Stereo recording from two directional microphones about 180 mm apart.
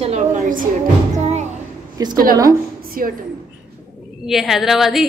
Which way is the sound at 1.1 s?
40° right (ahead or behind).